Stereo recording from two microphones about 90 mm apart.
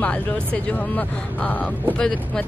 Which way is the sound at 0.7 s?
15° left (ahead or behind).